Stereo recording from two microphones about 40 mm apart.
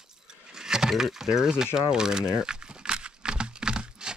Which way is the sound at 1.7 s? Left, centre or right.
Centre.